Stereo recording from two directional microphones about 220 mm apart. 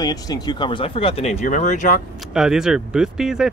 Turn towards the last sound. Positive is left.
turn(degrees=0)  # may be behind; listen again after turning